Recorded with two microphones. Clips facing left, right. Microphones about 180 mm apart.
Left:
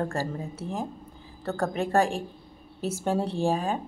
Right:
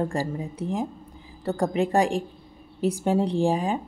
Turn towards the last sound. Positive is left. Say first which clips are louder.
# right 3 dB
turn(degrees=-15)  # may be behind; listen again after turning